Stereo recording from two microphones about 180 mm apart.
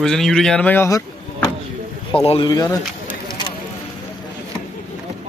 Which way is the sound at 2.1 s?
30° left (ahead or behind).